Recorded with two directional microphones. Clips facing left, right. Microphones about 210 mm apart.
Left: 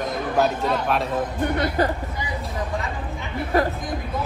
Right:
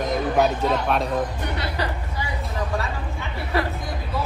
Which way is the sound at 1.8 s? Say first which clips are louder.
Left 6 dB; 50° left (ahead or behind).